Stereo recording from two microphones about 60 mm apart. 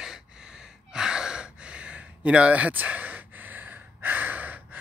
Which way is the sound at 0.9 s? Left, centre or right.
Centre.